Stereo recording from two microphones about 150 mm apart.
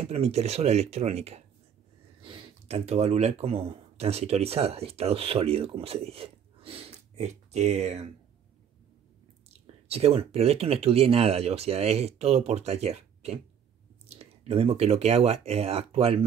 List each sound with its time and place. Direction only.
0.1 s speech: 45° right (ahead or behind)
2.2 s a sound: 35° right (ahead or behind)
2.8 s speech: 45° right (ahead or behind)
9.5 s speech: 45° right (ahead or behind)